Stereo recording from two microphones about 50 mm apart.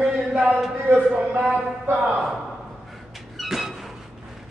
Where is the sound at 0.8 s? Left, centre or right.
Right.